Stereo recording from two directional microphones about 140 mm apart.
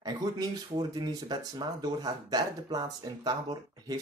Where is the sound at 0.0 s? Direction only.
30° right (ahead or behind).